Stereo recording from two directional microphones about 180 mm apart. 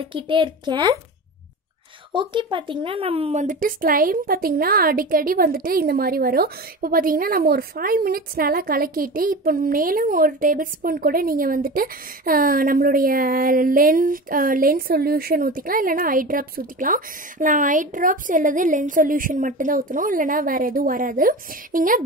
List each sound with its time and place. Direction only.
0.0 s speech: 30° right (ahead or behind)
2.1 s a woman's voice: 25° right (ahead or behind); by 22.0 s 50° right (ahead or behind)